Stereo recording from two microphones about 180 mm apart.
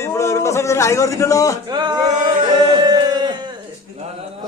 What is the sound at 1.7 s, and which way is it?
Male singing, 25° right (ahead or behind).